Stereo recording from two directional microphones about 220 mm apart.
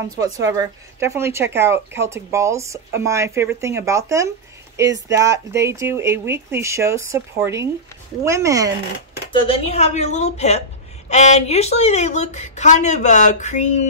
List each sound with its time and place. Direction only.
0.2 s speech: 15° right (ahead or behind)
9.5 s a woman's voice: 30° left (ahead or behind)